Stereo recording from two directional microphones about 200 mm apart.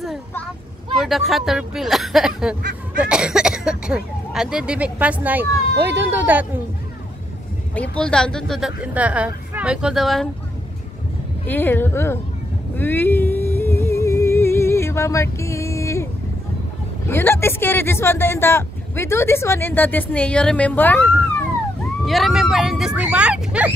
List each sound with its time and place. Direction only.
0.9 s speech: centre (ahead or behind)
5.8 s speech: 60° right (ahead or behind)
7.9 s speech: 5° left (ahead or behind)
11.4 s speech: 10° left (ahead or behind)
12.7 s humming: 10° left (ahead or behind)
17.1 s speech: 10° left (ahead or behind); by 23.7 s 5° right (ahead or behind)